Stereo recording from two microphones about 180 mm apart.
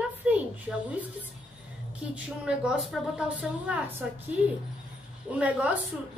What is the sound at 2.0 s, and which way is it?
A woman's voice, 5° right (ahead or behind).